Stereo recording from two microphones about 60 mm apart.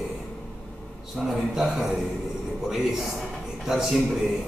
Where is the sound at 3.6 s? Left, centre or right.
Centre.